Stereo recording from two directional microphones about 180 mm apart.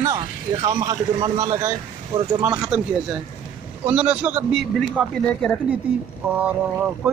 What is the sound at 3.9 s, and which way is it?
Speech, 10° right (ahead or behind).